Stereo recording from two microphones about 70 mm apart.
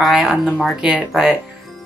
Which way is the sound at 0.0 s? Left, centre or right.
Centre.